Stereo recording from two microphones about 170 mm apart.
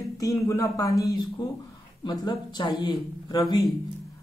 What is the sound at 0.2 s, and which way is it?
Speech, 20° left (ahead or behind).